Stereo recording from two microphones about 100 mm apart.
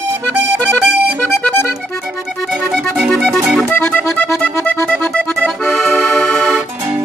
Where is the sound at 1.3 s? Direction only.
20° left (ahead or behind).